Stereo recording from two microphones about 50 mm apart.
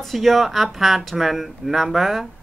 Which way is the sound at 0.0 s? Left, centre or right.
Centre.